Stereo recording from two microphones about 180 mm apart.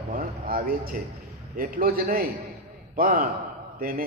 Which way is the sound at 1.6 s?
50° right (ahead or behind).